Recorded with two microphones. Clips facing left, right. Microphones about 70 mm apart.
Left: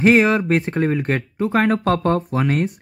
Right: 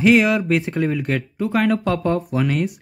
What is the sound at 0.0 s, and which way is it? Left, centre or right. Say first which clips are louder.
Speech: left 1 dB; left.